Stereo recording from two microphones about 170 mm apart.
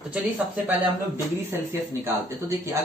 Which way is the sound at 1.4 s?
10° right (ahead or behind).